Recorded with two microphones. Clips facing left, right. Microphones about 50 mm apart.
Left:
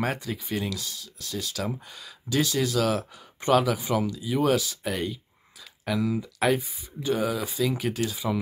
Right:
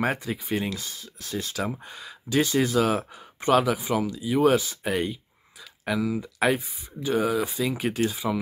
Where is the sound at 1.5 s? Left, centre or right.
Centre.